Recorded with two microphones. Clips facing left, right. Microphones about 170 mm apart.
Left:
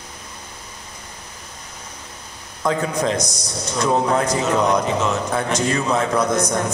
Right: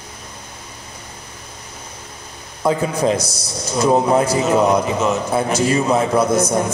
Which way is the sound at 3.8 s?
20° right (ahead or behind).